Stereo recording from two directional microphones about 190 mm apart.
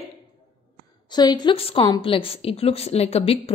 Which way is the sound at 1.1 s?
20° left (ahead or behind).